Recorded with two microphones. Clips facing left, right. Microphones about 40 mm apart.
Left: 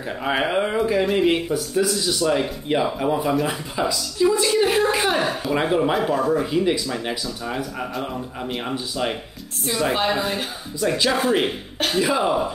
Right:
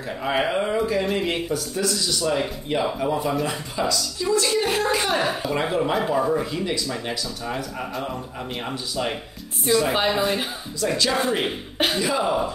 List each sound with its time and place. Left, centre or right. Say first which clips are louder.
0.2 s speech: left 1 dB; centre
4.6 s a sound: left 4 dB; centre
4.8 s chuckle: left 2 dB; centre
5.2 s a sound: left 1 dB; centre
5.6 s speech: left 4 dB; centre
6.1 s speech: left 1 dB; centre
6.4 s speech: left 5 dB; centre
7.1 s speech: left 1 dB; centre
9.9 s speech: right 1 dB; centre
10.8 s speech: left 2 dB; centre
12.0 s speech: left 5 dB; centre